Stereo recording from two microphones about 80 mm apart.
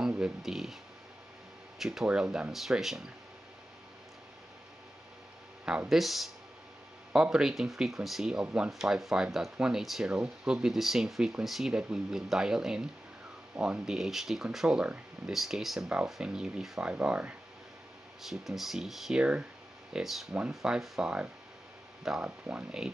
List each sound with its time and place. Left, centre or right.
0.2 s speech: centre
1.8 s speech: centre
5.9 s speech: centre
18.2 s speech: centre